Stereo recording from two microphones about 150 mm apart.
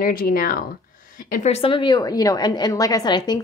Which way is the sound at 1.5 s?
35° left (ahead or behind).